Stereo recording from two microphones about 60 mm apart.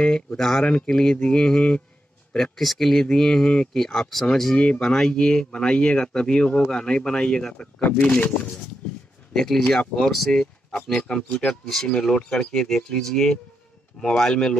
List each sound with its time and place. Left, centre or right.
0.0 s speech: centre
9.3 s speech: centre
11.0 s speech: centre